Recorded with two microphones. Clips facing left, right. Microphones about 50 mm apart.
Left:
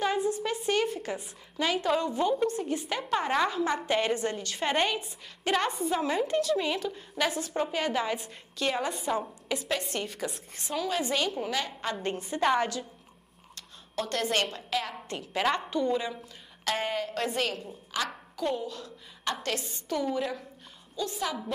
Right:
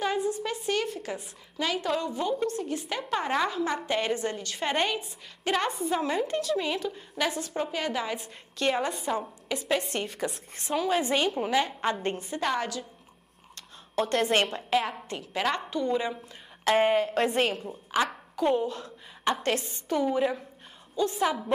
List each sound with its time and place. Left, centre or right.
0.0 s a woman's voice: centre
9.6 s a woman's voice: centre
10.7 s a woman's voice: centre
12.2 s a woman's voice: centre
14.0 s a woman's voice: right
15.0 s a woman's voice: centre
16.6 s a woman's voice: right
17.9 s a sound: right
18.6 s a woman's voice: right
19.5 s a woman's voice: centre
20.2 s a woman's voice: right